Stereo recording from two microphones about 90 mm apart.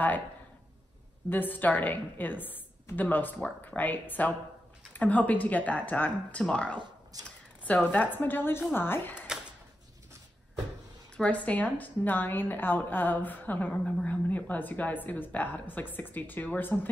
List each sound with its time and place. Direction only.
1.3 s a woman's voice: 20° left (ahead or behind)
11.1 s a woman's voice: 15° left (ahead or behind)